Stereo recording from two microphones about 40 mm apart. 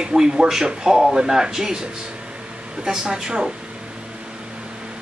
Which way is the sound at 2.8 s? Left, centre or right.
Centre.